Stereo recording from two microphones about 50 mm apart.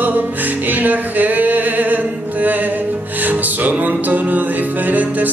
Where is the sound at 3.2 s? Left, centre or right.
Right.